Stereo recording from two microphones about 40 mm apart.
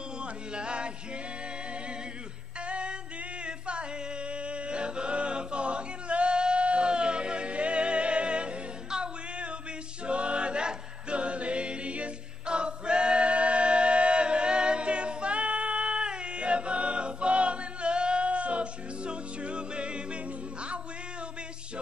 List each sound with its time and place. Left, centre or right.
0.2 s music: right
2.6 s music: right
3.4 s a capella: right
10.0 s choir: right